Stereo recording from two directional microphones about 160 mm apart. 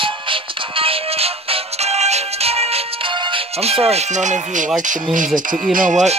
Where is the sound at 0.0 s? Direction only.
35° right (ahead or behind).